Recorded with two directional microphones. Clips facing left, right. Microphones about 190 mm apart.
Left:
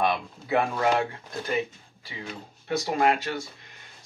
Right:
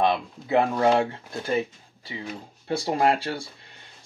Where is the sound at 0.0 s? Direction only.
25° right (ahead or behind).